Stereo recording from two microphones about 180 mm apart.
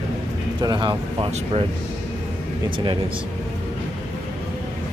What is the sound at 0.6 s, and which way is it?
Speech, 25° right (ahead or behind).